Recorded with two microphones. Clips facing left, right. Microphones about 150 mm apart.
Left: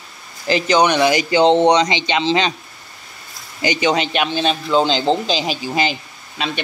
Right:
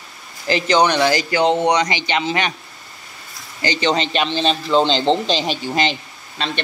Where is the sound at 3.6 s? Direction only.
10° left (ahead or behind).